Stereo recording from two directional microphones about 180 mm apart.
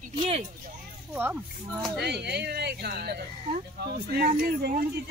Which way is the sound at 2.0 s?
65° right (ahead or behind).